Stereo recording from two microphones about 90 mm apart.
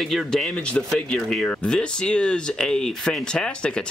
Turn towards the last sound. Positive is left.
turn(degrees=10)  # may be behind; listen again after turning